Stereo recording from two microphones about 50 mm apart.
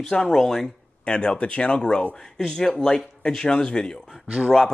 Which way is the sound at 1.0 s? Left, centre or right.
Centre.